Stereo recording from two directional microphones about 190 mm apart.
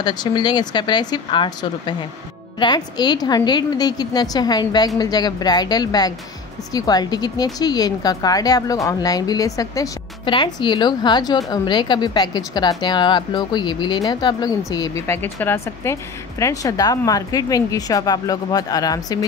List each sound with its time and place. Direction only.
0.0 s a woman's voice: 20° left (ahead or behind)